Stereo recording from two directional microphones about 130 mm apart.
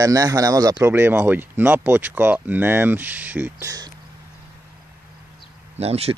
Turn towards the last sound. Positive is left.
turn(degrees=-50)  # may be behind; listen again after turning